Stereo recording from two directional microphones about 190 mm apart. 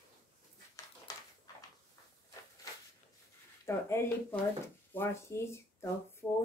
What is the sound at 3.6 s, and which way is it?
Speech, 15° left (ahead or behind).